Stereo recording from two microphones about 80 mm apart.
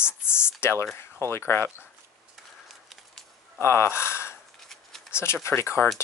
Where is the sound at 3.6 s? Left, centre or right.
Left.